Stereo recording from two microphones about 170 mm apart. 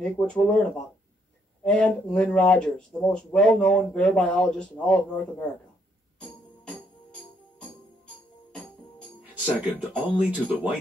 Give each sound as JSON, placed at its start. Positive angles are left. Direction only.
{"t": 0.0, "sound": "speech", "side_deg": 0}
{"t": 6.6, "sound": "music", "side_deg": 5}
{"t": 9.3, "sound": "speech", "side_deg": -10}